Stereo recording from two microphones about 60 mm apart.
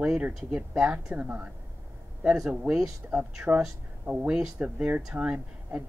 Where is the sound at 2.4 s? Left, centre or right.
Centre.